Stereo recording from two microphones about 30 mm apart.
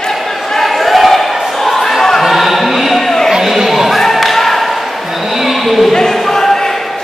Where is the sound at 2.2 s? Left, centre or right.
Centre.